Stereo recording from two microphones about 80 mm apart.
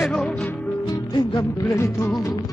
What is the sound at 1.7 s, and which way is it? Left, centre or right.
Music, left.